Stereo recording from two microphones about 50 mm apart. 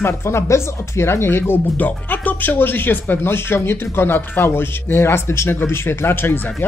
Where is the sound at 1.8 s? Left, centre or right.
Left.